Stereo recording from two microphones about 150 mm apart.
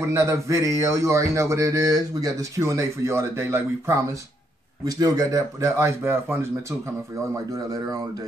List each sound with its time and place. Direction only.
0.0 s speech: 20° right (ahead or behind)
7.5 s speech: 25° right (ahead or behind)